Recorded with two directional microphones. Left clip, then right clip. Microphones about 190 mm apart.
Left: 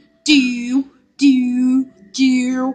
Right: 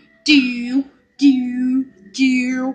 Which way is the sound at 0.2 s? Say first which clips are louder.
Even; 20° left (ahead or behind).